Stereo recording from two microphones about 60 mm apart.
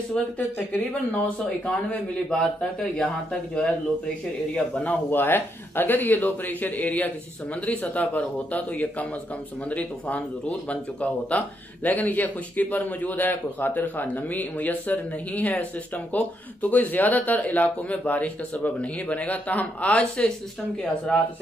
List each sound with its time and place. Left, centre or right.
0.2 s a man's voice: centre
4.8 s speech: left
20.2 s a man's voice: centre